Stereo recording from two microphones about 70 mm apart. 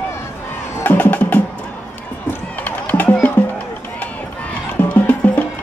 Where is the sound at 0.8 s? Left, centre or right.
Left.